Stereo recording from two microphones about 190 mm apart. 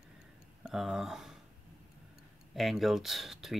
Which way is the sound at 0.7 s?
Centre (ahead or behind).